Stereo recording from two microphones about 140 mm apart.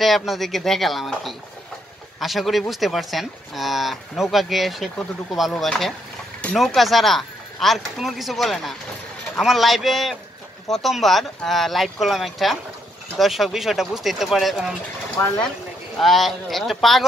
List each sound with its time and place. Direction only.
0.0 s speech: centre (ahead or behind)
16.0 s speech: centre (ahead or behind)